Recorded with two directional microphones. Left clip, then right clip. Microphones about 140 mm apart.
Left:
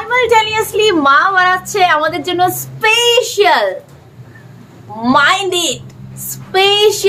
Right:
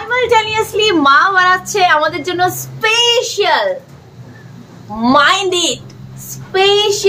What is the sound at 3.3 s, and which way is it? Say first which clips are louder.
Speech: left 2 dB; 65° left (ahead or behind).